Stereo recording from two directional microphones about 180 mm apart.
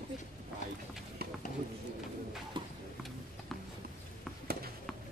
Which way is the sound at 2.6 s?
25° right (ahead or behind).